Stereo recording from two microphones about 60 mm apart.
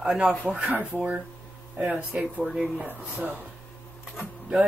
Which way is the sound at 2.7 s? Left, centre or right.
Right.